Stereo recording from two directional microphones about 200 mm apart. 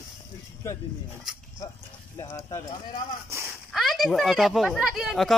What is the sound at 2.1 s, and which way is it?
Speech, 15° left (ahead or behind).